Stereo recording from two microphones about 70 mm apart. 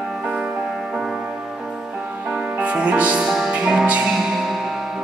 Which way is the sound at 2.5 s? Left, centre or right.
Centre.